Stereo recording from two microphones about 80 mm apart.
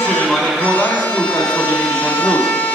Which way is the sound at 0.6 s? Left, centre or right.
Centre.